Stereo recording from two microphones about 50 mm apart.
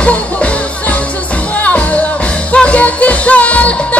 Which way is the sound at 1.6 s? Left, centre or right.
Left.